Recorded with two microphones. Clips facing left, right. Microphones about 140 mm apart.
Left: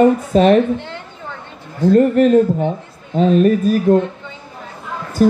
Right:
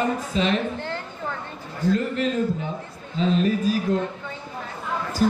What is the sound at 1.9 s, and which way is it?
Speech, 50° left (ahead or behind).